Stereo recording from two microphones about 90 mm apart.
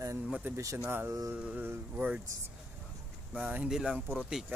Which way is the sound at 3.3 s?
15° right (ahead or behind).